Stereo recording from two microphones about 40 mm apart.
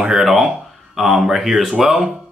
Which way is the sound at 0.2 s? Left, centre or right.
Centre.